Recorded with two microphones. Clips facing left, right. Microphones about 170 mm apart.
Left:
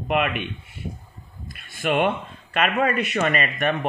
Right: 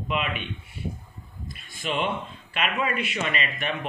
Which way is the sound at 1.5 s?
60° left (ahead or behind).